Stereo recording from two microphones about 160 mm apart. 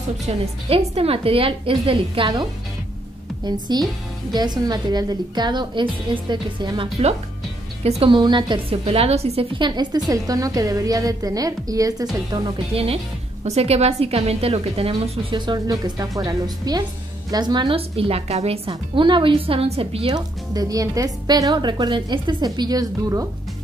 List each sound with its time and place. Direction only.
0.3 s a woman's voice: 40° right (ahead or behind)
3.4 s a woman's voice: 25° right (ahead or behind)
12.7 s a woman's voice: 40° right (ahead or behind)
20.2 s a woman's voice: 25° right (ahead or behind)